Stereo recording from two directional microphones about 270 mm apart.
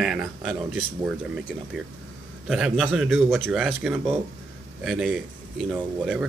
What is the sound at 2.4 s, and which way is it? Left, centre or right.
Speech, centre.